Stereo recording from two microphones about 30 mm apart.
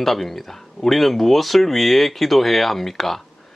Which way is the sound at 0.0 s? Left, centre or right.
Centre.